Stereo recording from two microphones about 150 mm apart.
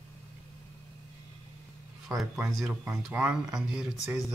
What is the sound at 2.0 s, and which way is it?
Speech, centre (ahead or behind).